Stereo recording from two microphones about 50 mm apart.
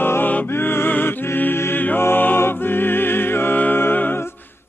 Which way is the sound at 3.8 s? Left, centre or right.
Left.